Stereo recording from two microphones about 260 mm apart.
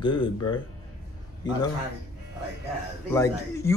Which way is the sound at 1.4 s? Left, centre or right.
Centre.